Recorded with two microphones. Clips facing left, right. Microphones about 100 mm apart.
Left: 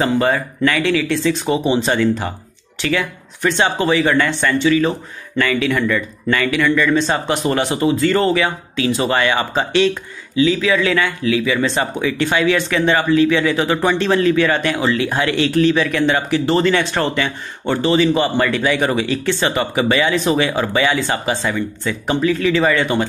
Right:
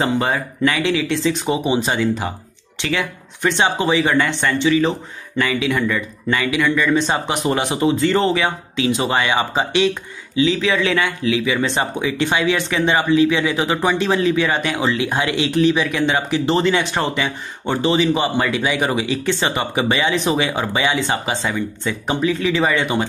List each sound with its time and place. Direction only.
0.0 s speech: 20° right (ahead or behind)